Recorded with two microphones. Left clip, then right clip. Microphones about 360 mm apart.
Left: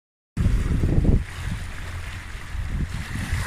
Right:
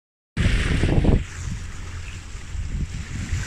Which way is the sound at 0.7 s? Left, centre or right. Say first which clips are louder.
Right 1 dB; right.